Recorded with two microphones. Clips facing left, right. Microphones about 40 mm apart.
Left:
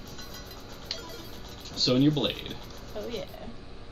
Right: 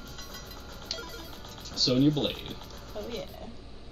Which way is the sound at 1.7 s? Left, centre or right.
Left.